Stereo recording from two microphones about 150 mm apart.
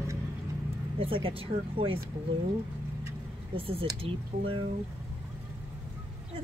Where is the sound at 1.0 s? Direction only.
35° right (ahead or behind).